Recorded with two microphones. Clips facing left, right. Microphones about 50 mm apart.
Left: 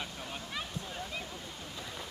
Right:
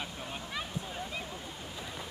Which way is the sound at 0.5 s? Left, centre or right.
Centre.